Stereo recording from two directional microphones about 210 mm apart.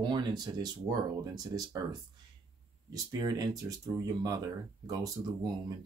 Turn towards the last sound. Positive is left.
turn(degrees=-15)  # may be behind; listen again after turning